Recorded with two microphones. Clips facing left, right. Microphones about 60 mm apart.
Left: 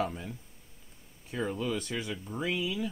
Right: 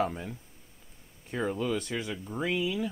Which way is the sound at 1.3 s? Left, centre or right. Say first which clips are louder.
Right 2 dB; centre.